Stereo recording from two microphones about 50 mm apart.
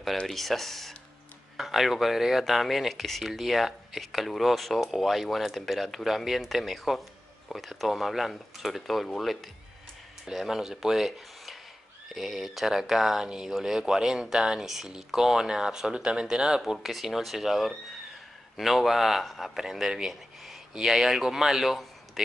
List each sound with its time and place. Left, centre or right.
0.3 s speech: centre